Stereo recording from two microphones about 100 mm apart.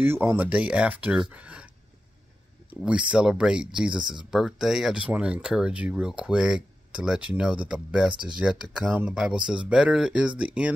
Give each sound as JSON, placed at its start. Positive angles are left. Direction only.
{"t": 0.0, "sound": "speech", "side_deg": -25}
{"t": 1.3, "sound": "a sound", "side_deg": -10}
{"t": 2.7, "sound": "speech", "side_deg": -10}
{"t": 8.1, "sound": "speech", "side_deg": -50}
{"t": 8.4, "sound": "speech", "side_deg": -10}